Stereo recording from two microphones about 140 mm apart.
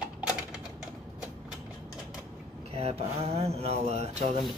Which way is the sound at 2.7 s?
50° right (ahead or behind).